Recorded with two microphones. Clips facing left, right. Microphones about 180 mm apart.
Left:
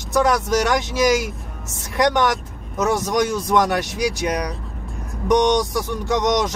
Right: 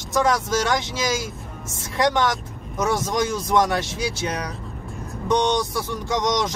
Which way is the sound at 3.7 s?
15° left (ahead or behind).